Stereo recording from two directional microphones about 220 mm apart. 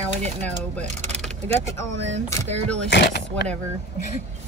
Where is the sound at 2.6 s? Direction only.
90° right.